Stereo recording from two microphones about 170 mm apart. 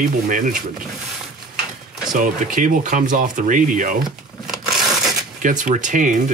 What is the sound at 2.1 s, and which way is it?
Speech, 50° right (ahead or behind).